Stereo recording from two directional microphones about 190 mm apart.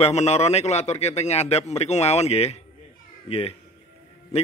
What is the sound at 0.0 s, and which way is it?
A man's voice, 35° left (ahead or behind).